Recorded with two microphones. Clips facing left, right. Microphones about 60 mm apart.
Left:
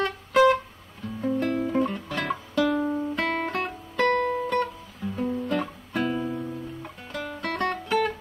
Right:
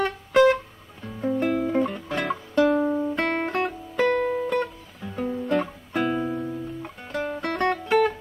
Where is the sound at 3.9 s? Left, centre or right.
Centre.